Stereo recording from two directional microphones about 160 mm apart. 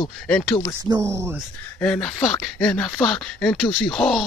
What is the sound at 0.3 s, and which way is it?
Speech, 5° left (ahead or behind).